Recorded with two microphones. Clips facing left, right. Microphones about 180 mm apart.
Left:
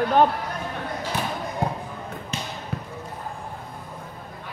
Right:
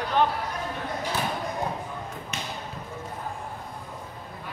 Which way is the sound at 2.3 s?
30° left (ahead or behind).